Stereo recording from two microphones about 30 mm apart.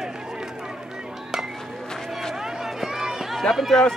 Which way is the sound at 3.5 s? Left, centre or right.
Centre.